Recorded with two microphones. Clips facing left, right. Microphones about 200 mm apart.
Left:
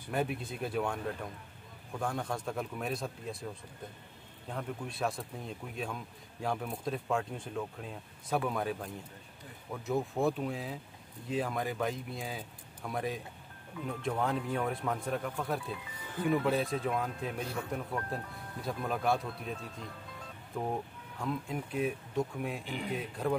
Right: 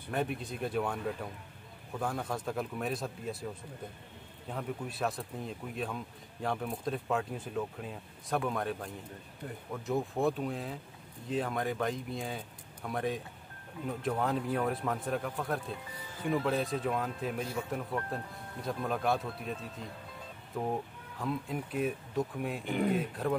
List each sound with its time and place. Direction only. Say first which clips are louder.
0.1 s speech: even; centre (ahead or behind)
4.5 s speech: right 1 dB; centre (ahead or behind)
22.7 s speech: right 7 dB; 50° right (ahead or behind)
22.9 s speech: right 2 dB; centre (ahead or behind)